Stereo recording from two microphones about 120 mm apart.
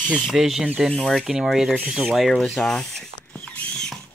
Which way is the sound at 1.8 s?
Centre (ahead or behind).